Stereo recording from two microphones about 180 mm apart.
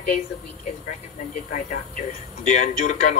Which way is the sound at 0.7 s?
40° left (ahead or behind).